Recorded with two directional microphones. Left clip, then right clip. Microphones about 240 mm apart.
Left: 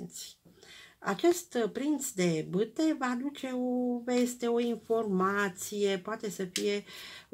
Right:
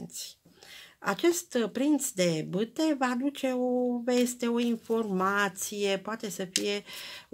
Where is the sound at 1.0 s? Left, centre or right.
Right.